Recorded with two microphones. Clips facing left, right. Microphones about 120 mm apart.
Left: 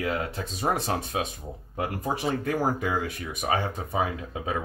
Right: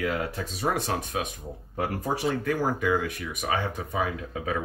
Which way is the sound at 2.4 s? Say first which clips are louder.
Right 1 dB; 25° left (ahead or behind).